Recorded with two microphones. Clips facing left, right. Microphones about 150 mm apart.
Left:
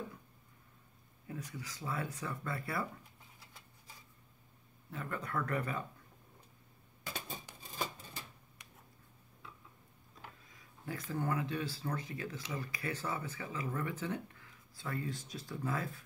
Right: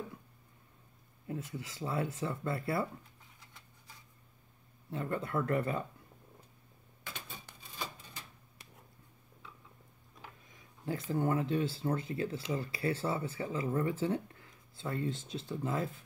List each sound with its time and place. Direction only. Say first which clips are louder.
1.2 s speech: right 4 dB; 25° right (ahead or behind)
4.9 s speech: right 5 dB; 30° right (ahead or behind)
10.9 s speech: right 5 dB; 25° right (ahead or behind)